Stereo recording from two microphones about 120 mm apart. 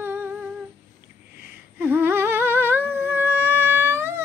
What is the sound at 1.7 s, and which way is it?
Humming, 15° right (ahead or behind).